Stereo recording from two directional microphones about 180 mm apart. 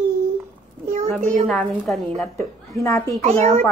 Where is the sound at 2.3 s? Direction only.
15° left (ahead or behind).